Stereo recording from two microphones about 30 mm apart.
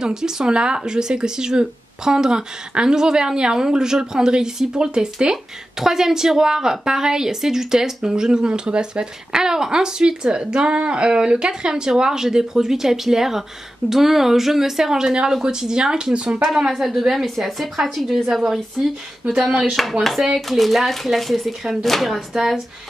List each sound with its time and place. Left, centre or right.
0.0 s speech: right
8.5 s speech: right
9.3 s speech: right
16.6 s speech: centre
19.2 s speech: right
19.7 s speech: centre
22.3 s speech: centre